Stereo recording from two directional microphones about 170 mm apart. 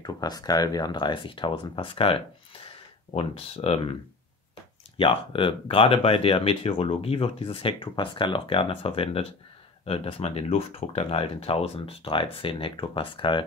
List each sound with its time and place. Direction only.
0.0 s speech: 25° left (ahead or behind)
4.9 s speech: 30° left (ahead or behind)